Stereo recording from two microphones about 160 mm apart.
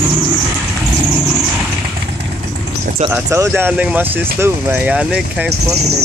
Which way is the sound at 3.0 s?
15° right (ahead or behind).